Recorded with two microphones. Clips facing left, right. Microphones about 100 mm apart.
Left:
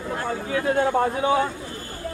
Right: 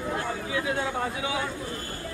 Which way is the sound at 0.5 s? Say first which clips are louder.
Left 9 dB; 45° left (ahead or behind).